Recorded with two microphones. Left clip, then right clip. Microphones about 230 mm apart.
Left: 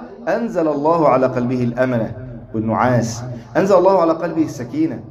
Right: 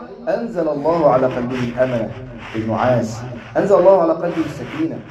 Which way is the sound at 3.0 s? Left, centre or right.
Left.